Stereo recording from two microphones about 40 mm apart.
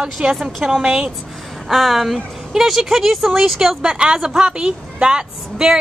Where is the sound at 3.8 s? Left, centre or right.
Right.